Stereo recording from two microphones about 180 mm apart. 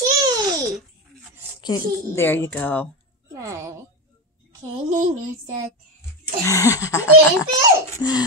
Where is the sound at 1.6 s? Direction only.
20° left (ahead or behind).